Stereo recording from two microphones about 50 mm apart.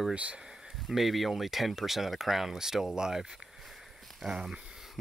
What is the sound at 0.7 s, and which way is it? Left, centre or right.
Speech, centre.